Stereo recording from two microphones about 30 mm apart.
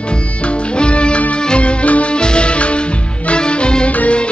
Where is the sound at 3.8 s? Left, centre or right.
Left.